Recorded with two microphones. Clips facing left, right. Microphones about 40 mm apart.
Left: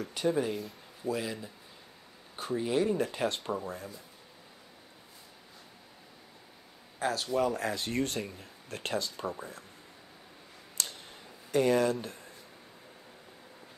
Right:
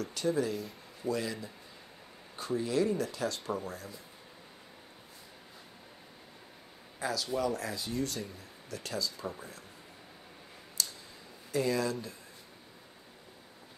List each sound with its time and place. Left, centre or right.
0.0 s speech: left
0.6 s speech: centre
2.3 s speech: left
7.0 s speech: left
9.4 s speech: left
10.8 s a sound: left
11.5 s speech: left